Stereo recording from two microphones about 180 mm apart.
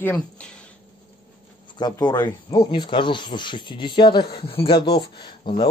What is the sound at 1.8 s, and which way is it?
Speech, 25° left (ahead or behind).